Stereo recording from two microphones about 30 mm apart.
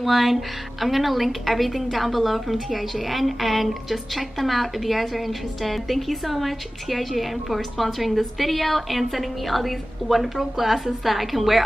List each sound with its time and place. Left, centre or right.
0.0 s a woman's voice: centre